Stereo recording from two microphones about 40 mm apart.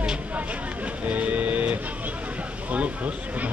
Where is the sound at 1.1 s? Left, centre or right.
Right.